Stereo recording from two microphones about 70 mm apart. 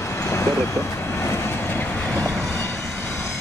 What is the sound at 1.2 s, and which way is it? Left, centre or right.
Train, left.